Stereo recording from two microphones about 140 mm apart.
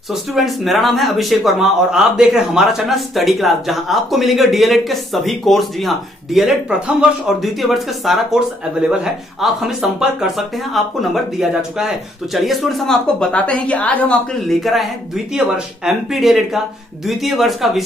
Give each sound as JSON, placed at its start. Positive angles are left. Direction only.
{"t": 0.1, "sound": "speech", "side_deg": 0}